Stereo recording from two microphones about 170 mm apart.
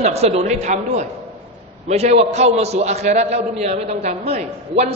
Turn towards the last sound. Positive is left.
turn(degrees=-40)  # may be behind; listen again after turning